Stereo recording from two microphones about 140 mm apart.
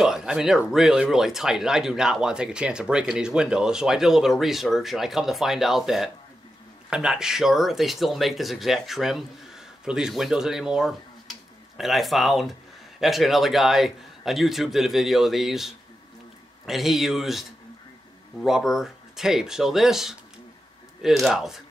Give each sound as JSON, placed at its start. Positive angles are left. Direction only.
{"t": 0.0, "sound": "speech", "side_deg": -5}